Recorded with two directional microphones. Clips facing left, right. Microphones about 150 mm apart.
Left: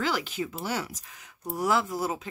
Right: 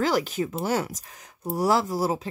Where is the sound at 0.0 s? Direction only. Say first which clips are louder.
Right 5 dB; 40° right (ahead or behind).